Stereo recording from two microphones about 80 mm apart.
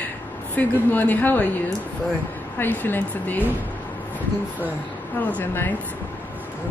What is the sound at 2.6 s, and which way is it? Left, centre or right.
Speech, left.